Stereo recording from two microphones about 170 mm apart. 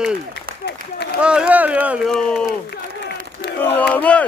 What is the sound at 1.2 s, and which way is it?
Speech, 5° right (ahead or behind).